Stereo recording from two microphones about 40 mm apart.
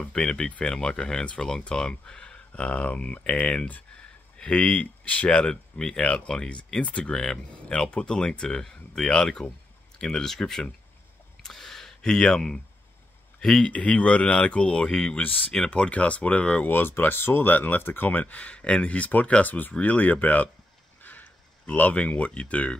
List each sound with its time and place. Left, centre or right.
0.0 s speech: left
5.4 s speech: centre
5.9 s speech: left; by 10.7 s centre
11.4 s a sound: centre
13.4 s speech: centre
13.7 s speech: left
15.1 s speech: left
15.5 s speech: centre
15.8 s speech: left
16.6 s speech: left
18.3 s speech: left
21.0 s a sound: left
21.9 s speech: left